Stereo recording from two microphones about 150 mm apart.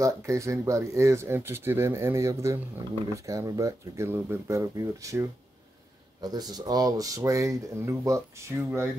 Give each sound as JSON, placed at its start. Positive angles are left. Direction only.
{"t": 0.0, "sound": "speech", "side_deg": -20}